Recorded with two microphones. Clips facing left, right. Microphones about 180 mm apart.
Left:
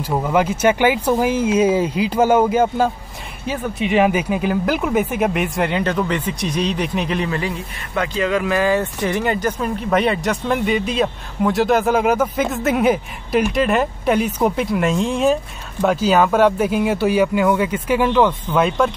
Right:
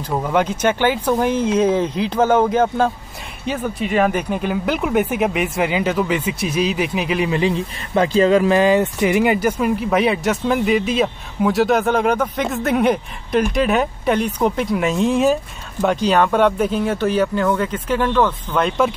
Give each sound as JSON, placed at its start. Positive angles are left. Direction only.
{"t": 0.0, "sound": "speech", "side_deg": 5}
{"t": 7.2, "sound": "speech", "side_deg": -20}
{"t": 7.9, "sound": "speech", "side_deg": -30}